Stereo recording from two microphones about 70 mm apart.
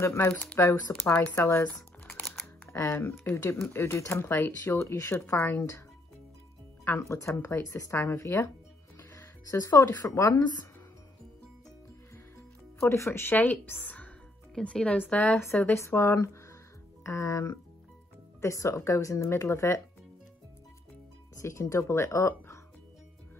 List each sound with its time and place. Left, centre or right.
0.0 s speech: left
1.6 s crumpling: left
2.7 s speech: left
6.8 s speech: left
7.6 s speech: left
8.0 s speech: left
9.6 s speech: left
10.3 s speech: left
12.8 s speech: left
13.4 s a woman's voice: left
21.4 s speech: left